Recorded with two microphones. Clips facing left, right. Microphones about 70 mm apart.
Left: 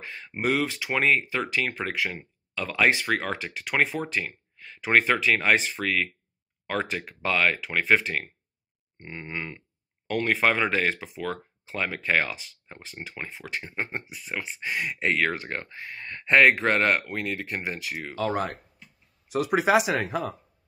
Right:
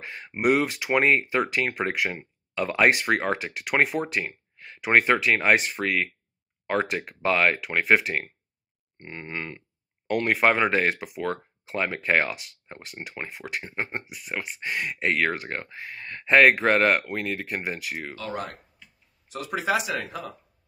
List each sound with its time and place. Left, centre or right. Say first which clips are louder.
0.0 s speech: right 4 dB; centre
18.1 s speech: left 6 dB; left